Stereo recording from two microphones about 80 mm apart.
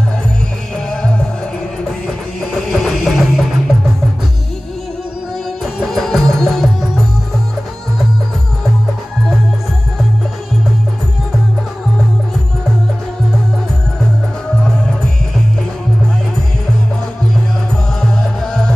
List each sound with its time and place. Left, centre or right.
0.7 s music: centre
2.5 s music: centre
5.6 s music: centre
18.0 s music: centre